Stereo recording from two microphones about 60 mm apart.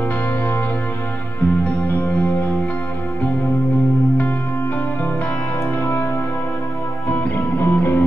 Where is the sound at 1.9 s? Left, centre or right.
Left.